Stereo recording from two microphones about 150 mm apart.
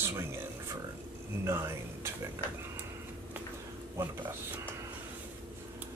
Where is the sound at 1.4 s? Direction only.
15° right (ahead or behind).